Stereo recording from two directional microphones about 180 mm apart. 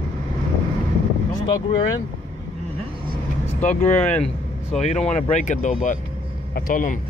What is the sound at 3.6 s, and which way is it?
Speech, 40° left (ahead or behind).